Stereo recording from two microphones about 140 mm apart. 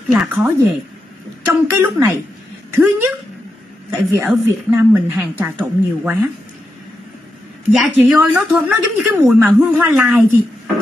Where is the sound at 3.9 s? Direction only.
15° right (ahead or behind).